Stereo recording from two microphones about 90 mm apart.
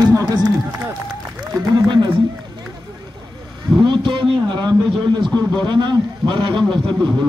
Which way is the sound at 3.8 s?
60° right (ahead or behind).